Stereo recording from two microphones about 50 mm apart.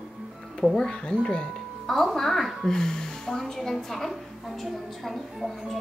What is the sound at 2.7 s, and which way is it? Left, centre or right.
A woman's voice, centre.